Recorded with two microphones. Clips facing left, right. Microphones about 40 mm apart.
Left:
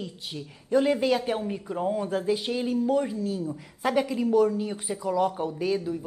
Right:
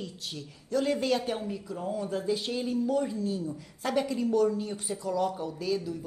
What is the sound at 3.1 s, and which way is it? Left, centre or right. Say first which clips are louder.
A woman's voice: left 2 dB; centre.